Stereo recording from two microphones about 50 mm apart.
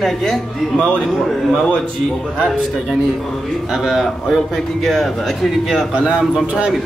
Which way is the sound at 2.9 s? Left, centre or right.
Centre.